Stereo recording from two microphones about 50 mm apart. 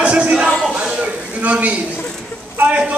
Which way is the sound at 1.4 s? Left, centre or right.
Right.